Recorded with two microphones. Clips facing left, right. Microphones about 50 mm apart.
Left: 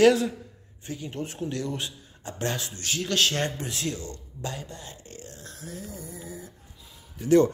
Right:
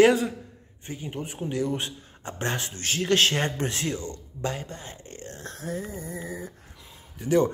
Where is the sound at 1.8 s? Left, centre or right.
Right.